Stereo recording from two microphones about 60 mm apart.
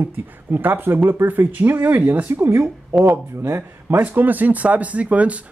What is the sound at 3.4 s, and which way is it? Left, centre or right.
Speech, right.